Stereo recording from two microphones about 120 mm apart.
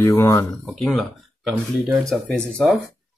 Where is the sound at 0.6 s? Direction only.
Centre (ahead or behind).